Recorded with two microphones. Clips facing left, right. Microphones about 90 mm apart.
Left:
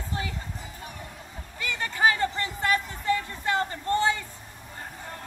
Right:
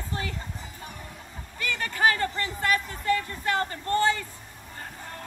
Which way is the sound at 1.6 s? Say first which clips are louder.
Even; 15° left (ahead or behind).